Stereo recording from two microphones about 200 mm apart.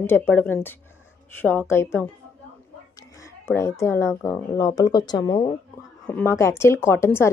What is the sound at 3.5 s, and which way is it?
A woman's voice, 15° left (ahead or behind).